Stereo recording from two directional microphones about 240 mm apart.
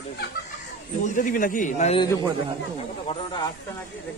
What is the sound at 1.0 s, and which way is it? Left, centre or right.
A man's voice, left.